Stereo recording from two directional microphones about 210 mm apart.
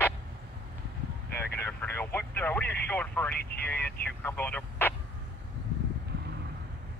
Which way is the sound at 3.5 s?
50° left (ahead or behind).